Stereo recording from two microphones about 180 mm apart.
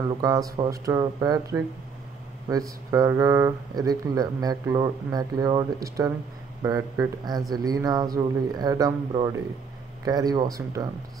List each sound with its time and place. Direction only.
0.0 s speech: 20° right (ahead or behind)